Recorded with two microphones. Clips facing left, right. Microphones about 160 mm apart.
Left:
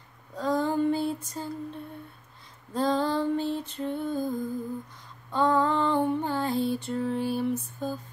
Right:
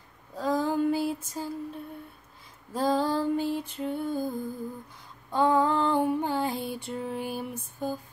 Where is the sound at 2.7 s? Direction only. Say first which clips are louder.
Even; 10° right (ahead or behind).